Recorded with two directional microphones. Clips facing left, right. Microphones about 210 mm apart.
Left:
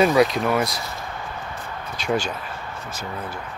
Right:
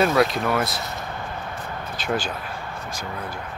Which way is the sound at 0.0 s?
Centre (ahead or behind).